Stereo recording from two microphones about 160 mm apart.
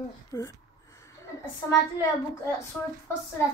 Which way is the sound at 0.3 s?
20° left (ahead or behind).